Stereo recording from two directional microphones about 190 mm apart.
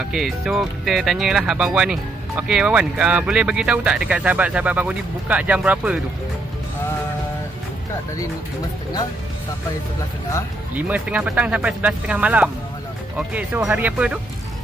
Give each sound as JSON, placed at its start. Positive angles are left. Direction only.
{"t": 0.0, "sound": "speech", "side_deg": 0}
{"t": 10.9, "sound": "speech", "side_deg": -5}